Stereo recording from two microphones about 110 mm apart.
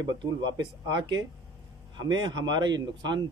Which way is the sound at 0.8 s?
45° right (ahead or behind).